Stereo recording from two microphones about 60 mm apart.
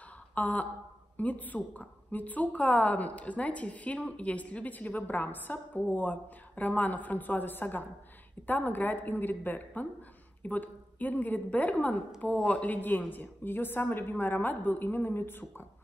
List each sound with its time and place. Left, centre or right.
0.3 s a woman's voice: left